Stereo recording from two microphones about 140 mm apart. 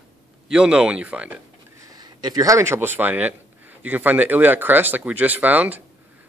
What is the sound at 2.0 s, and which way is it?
Speech, 30° right (ahead or behind).